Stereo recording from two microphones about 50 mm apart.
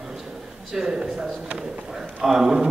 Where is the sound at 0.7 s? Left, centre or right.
Centre.